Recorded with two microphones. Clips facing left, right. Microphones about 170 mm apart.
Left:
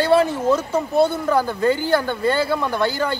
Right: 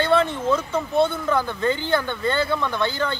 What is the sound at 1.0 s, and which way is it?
Speech, 35° left (ahead or behind).